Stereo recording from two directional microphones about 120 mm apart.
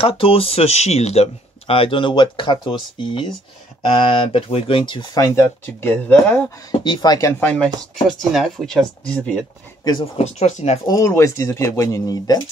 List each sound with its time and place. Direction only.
0.0 s speech: 50° left (ahead or behind)
5.2 s speech: 25° left (ahead or behind)
6.8 s speech: 40° left (ahead or behind)
7.3 s speech: 10° left (ahead or behind)
8.3 s speech: centre (ahead or behind)
10.1 s speech: 65° left (ahead or behind)
10.9 s speech: 25° left (ahead or behind)